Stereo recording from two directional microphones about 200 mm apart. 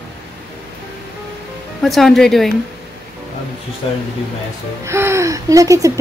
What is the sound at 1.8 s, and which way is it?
Speech, centre (ahead or behind).